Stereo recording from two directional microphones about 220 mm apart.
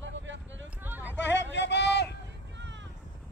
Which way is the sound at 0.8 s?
10° right (ahead or behind).